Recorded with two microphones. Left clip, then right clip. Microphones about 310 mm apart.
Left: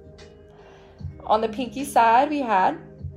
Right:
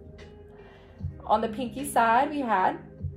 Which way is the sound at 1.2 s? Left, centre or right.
Left.